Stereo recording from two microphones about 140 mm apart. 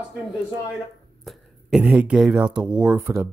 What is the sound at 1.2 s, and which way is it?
Speech, 5° right (ahead or behind).